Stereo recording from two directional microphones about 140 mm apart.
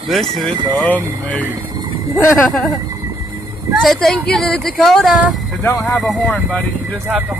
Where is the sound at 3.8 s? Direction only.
Centre (ahead or behind).